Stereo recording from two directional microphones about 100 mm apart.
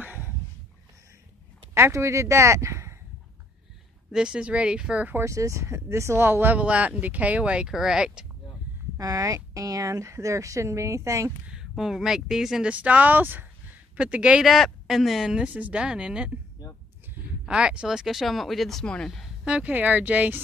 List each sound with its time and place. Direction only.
0.0 s a sound: 15° right (ahead or behind)
1.7 s speech: 25° right (ahead or behind)
4.1 s speech: 10° right (ahead or behind)
5.1 s speech: 30° right (ahead or behind); by 8.3 s 10° right (ahead or behind)
8.9 s speech: 35° right (ahead or behind)
11.5 s speech: 5° right (ahead or behind)
17.5 s speech: 10° right (ahead or behind)
19.4 s speech: 10° right (ahead or behind)